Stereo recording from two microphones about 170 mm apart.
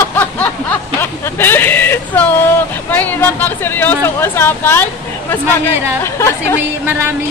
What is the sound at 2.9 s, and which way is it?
Speech, 10° left (ahead or behind).